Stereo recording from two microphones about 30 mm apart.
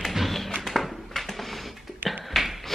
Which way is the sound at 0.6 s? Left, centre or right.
Centre.